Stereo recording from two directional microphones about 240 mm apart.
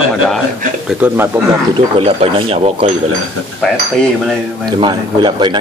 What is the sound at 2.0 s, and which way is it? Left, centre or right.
Speech, right.